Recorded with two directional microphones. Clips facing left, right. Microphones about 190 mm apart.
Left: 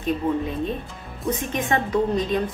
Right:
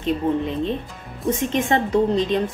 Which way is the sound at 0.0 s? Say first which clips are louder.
Right 2 dB; 25° right (ahead or behind).